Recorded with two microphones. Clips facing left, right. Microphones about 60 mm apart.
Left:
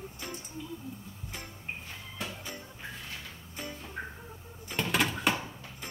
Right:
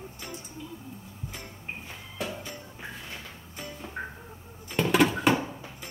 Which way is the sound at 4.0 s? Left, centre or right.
Centre.